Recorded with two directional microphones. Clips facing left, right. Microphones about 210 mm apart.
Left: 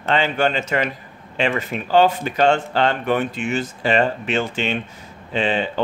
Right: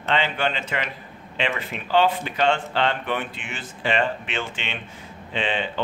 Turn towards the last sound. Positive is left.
turn(degrees=40)  # may be behind; listen again after turning